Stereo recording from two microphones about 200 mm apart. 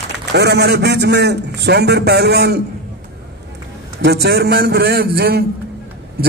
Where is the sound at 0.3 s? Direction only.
55° right (ahead or behind).